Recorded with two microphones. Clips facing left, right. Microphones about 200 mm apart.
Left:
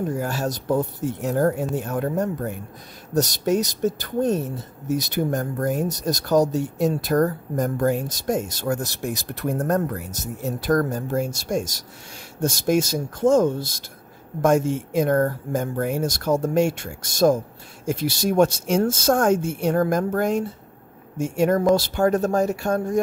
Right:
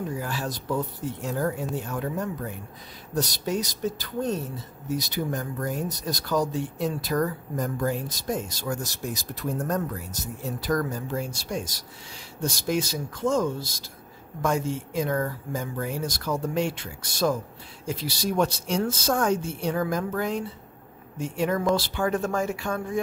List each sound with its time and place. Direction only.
0.1 s speech: 45° left (ahead or behind)